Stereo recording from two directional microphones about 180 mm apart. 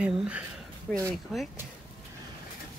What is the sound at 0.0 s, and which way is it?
Speech, 5° right (ahead or behind).